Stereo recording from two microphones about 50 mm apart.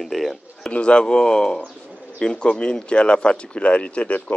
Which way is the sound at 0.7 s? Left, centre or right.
Centre.